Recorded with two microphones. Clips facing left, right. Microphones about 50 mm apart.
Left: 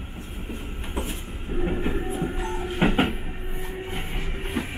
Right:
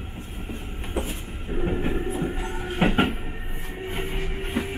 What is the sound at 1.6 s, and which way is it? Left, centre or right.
Train, centre.